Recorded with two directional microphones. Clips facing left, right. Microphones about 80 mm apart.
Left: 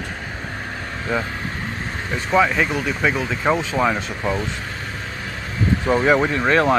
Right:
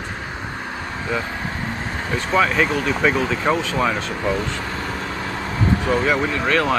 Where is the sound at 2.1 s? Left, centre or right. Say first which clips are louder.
Left 1 dB; centre.